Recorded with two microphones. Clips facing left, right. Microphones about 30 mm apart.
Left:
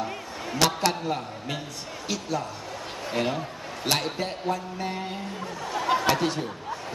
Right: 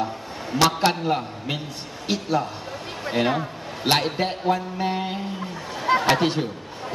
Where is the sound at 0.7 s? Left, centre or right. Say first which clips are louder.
Right 5 dB; right.